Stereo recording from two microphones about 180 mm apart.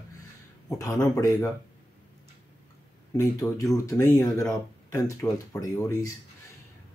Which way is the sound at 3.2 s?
20° left (ahead or behind).